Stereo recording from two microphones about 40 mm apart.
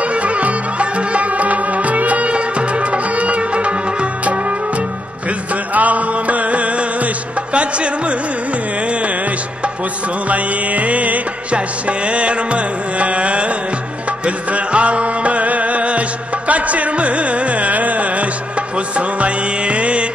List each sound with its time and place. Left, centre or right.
0.1 s music: right
5.8 s music: right
10.3 s music: right
16.4 s carnatic music: right
18.9 s music: right